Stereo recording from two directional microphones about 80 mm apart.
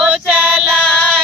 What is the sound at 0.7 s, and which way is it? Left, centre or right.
Music, centre.